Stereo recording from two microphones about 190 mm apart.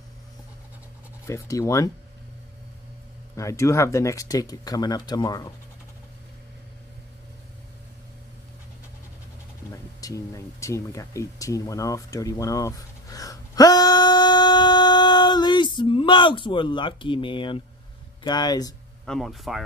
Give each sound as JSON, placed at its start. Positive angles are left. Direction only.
{"t": 1.2, "sound": "speech", "side_deg": 15}
{"t": 3.3, "sound": "speech", "side_deg": 15}
{"t": 9.7, "sound": "a sound", "side_deg": 15}
{"t": 18.2, "sound": "speech", "side_deg": 20}
{"t": 19.0, "sound": "speech", "side_deg": 0}